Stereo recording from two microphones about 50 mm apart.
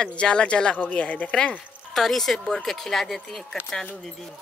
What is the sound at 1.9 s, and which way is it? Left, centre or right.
A woman's voice, centre.